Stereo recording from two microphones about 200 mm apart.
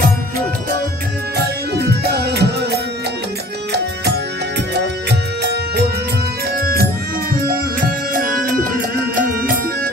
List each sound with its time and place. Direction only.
1.7 s music: 55° right (ahead or behind)
5.4 s music: 55° right (ahead or behind)
9.1 s music: 45° right (ahead or behind)